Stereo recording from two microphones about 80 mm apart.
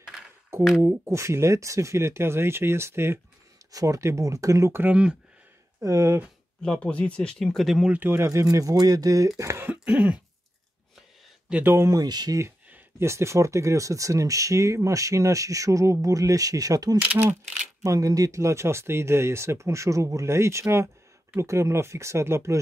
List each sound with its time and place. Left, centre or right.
0.5 s speech: right
3.7 s speech: right
4.8 s speech: centre
5.8 s speech: right
6.6 s speech: centre
7.6 s speech: centre
7.9 s speech: right
9.4 s speech: right
9.7 s cough: centre
11.6 s speech: right
11.9 s speech: right
13.0 s speech: right
17.0 s speech: centre
17.8 s speech: right